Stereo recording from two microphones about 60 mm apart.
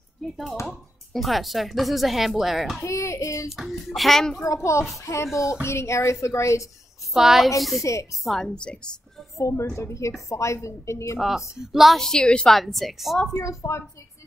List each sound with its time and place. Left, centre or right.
0.2 s speech: centre
2.8 s a woman's voice: left
3.4 s speech: centre
4.6 s a woman's voice: left
7.2 s speech: centre
7.8 s a woman's voice: left
8.2 s speech: centre
8.5 s a woman's voice: centre
9.4 s a woman's voice: left
11.1 s speech: centre
12.0 s a woman's voice: centre
12.5 s speech: centre
13.3 s a woman's voice: left